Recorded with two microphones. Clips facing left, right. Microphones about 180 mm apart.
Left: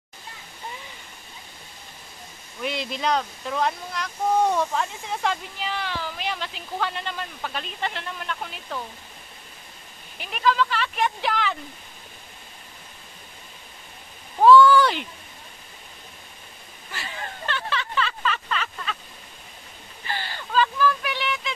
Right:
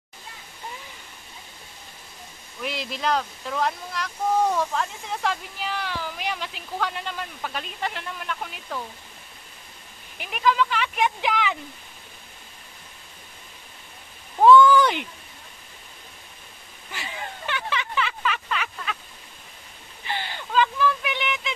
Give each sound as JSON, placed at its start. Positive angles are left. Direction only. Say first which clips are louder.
{"t": 2.6, "sound": "speech", "louder": "left 1 dB", "side_deg": 0}
{"t": 10.1, "sound": "speech", "louder": "even", "side_deg": -15}
{"t": 14.4, "sound": "speech", "louder": "even", "side_deg": -20}
{"t": 16.9, "sound": "speech", "louder": "even", "side_deg": -15}
{"t": 20.1, "sound": "a sound", "louder": "right 1 dB", "side_deg": -20}